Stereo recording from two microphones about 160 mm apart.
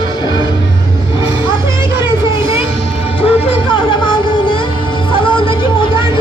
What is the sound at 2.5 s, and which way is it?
Music, 35° left (ahead or behind).